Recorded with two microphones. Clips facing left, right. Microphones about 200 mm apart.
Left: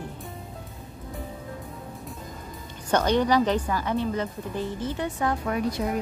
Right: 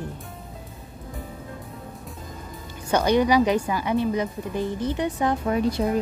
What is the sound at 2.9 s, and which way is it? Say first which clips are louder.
Speech: right 2 dB; 10° right (ahead or behind).